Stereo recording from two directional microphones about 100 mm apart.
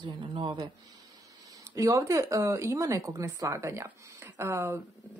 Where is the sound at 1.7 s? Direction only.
35° right (ahead or behind).